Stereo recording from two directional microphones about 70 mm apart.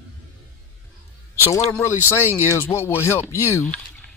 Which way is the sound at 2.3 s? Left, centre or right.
Left.